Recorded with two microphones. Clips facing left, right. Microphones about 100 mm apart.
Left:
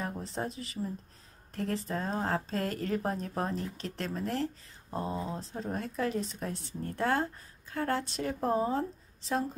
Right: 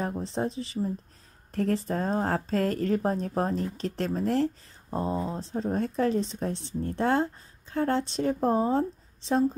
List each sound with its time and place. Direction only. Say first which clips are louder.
0.0 s speech: right 6 dB; 25° right (ahead or behind)